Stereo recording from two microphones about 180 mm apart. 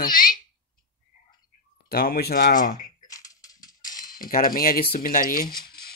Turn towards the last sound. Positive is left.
turn(degrees=50)  # may be behind; listen again after turning